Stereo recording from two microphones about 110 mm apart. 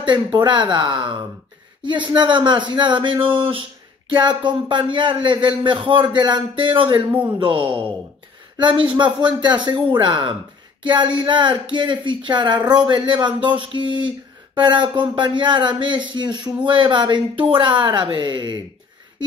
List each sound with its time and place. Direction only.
0.0 s speech: 45° right (ahead or behind)